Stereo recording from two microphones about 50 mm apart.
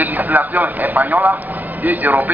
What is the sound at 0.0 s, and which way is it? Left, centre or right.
A man's voice, right.